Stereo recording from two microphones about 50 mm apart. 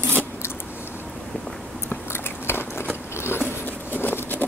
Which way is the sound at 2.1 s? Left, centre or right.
Left.